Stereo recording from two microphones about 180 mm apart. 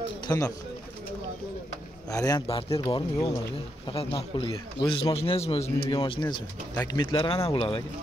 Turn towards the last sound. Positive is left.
turn(degrees=30)  # may be behind; listen again after turning